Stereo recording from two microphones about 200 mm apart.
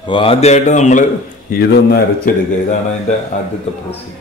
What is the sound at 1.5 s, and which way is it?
Speech, 50° left (ahead or behind).